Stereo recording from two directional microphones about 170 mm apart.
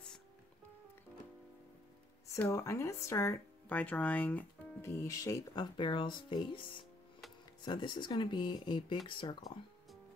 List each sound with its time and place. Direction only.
2.3 s speech: 15° left (ahead or behind)
5.0 s speech: 20° left (ahead or behind)
7.6 s speech: 25° left (ahead or behind)